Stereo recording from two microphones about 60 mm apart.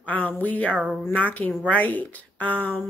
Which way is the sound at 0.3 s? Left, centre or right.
Left.